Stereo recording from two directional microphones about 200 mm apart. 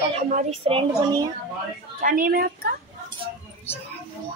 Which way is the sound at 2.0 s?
45° right (ahead or behind).